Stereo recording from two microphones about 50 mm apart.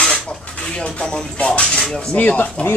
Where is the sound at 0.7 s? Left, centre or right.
Left.